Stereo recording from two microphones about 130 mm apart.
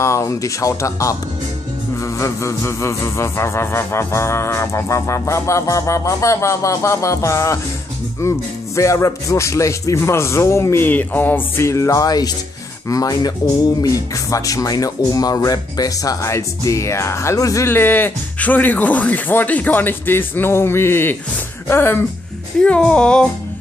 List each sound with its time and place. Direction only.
0.0 s speech: 25° left (ahead or behind)
2.1 s speech: 20° left (ahead or behind)